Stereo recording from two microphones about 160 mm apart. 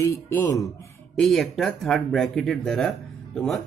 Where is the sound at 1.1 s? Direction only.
Centre (ahead or behind).